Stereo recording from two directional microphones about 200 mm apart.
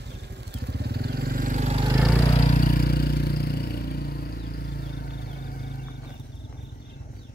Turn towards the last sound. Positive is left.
turn(degrees=50)  # may be behind; listen again after turning